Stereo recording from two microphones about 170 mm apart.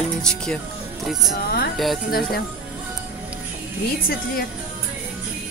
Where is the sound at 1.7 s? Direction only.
Centre (ahead or behind).